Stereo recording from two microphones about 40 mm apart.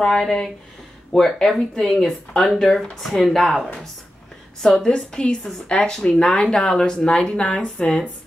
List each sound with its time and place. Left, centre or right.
0.0 s a woman's voice: centre
7.1 s a woman's voice: left